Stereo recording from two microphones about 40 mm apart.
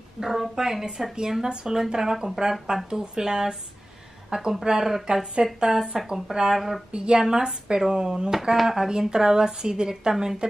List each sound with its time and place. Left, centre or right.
0.2 s a woman's voice: centre
6.9 s a woman's voice: centre